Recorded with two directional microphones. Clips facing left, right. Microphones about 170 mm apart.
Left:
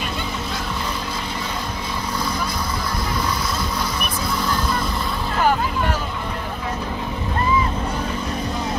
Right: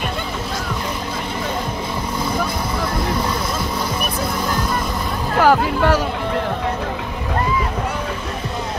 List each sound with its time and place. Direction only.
5.4 s music: 80° right